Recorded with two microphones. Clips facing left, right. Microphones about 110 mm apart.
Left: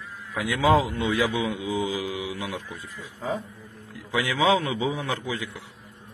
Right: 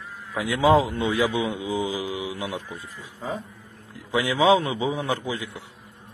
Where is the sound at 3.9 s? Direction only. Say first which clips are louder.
Right 2 dB; 25° right (ahead or behind).